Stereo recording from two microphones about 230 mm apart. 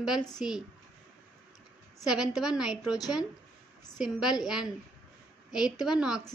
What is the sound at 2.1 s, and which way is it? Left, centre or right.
Speech, centre.